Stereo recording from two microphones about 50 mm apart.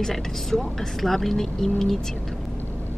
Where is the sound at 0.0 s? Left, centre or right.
Centre.